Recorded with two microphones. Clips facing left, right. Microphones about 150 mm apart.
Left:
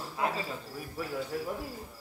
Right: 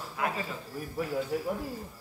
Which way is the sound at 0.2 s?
30° left (ahead or behind).